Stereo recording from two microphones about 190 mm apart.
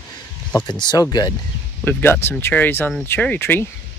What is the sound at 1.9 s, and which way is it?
Speech, 10° left (ahead or behind).